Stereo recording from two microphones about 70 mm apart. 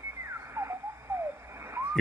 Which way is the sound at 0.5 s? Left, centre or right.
Right.